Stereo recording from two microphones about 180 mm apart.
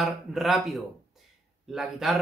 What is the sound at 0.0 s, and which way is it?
Speech, centre (ahead or behind).